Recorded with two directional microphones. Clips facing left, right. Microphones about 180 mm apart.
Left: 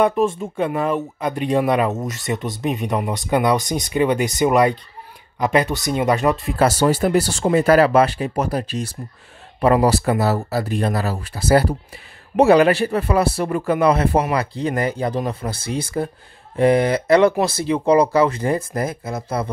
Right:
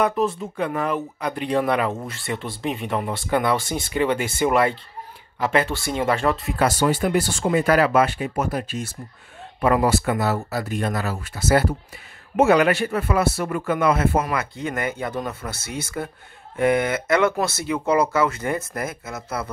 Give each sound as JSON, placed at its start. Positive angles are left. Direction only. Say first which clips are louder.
{"t": 0.0, "sound": "speech", "louder": "left 4 dB", "side_deg": 25}
{"t": 6.5, "sound": "speech", "louder": "left 4 dB", "side_deg": 40}